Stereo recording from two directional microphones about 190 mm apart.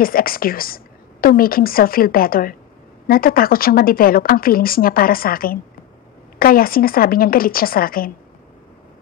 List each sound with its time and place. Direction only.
0.0 s speech: 50° left (ahead or behind)